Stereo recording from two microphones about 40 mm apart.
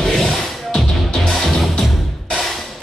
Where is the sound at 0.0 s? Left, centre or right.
Centre.